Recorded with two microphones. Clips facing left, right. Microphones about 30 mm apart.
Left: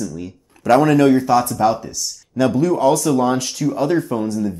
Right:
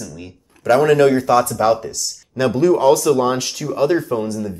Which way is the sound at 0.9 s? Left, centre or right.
Right.